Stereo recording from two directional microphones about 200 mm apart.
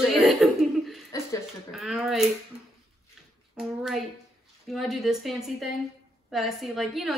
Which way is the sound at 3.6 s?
Centre (ahead or behind).